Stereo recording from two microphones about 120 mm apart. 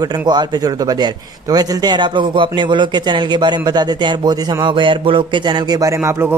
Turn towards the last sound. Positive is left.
turn(degrees=-20)  # may be behind; listen again after turning